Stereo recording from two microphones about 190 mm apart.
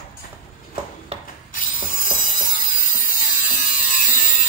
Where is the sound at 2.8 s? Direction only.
45° left (ahead or behind).